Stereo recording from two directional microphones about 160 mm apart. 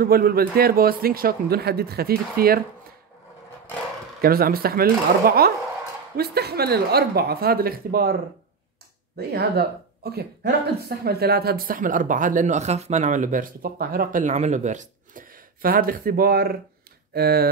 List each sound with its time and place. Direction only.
0.0 s a man's voice: 70° right (ahead or behind)
4.2 s a man's voice: 70° right (ahead or behind)
9.1 s speech: 90° right